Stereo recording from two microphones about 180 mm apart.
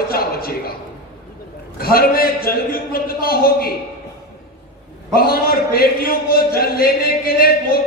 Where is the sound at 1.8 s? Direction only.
55° left (ahead or behind).